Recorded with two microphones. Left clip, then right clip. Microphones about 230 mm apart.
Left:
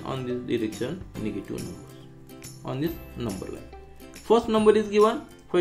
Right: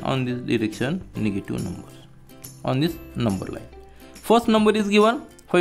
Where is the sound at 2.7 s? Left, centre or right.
Right.